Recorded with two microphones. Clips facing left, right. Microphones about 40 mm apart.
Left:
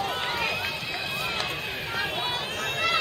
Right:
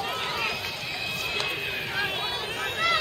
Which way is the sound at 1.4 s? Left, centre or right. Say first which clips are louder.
Right 1 dB; centre.